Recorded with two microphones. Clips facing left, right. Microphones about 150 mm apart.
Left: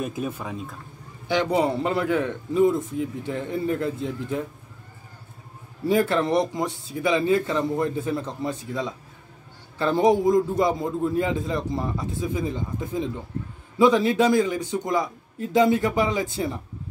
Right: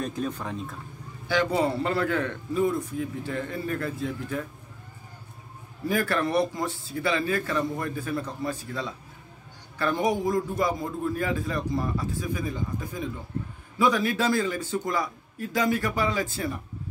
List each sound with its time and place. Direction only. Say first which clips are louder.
0.0 s speech: left 1 dB; 10° left (ahead or behind)
1.2 s a man's voice: left 2 dB; 20° left (ahead or behind)
5.9 s a man's voice: left 5 dB; 20° left (ahead or behind)